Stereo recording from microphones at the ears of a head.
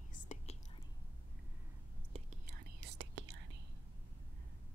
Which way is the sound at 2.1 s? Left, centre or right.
Right.